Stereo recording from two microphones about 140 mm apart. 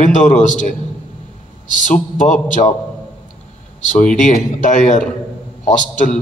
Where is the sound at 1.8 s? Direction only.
65° left (ahead or behind).